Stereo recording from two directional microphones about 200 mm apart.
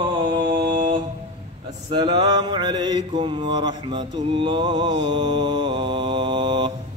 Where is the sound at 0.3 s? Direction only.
20° right (ahead or behind).